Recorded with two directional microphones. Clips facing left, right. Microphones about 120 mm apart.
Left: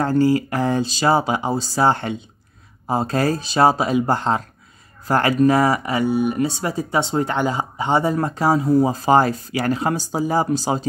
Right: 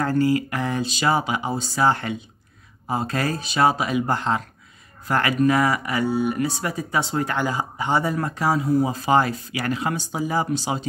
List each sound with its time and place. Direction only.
0.0 s speech: 30° left (ahead or behind)